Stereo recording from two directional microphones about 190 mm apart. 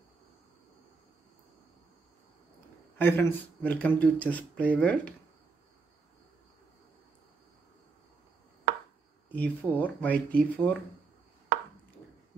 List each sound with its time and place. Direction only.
3.0 s speech: 10° left (ahead or behind)
8.7 s chopping: 60° right (ahead or behind)
9.3 s speech: 10° left (ahead or behind)
11.5 s chopping: 60° right (ahead or behind)